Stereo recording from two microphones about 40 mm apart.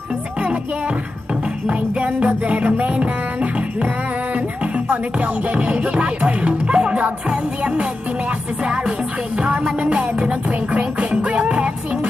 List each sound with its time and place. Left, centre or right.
1.7 s music: right
4.7 s music: right
9.7 s music: right